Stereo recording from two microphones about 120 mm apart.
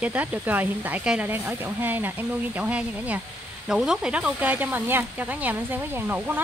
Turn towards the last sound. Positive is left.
turn(degrees=-15)  # may be behind; listen again after turning